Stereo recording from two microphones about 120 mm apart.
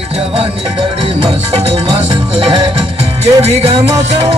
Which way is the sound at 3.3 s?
55° right (ahead or behind).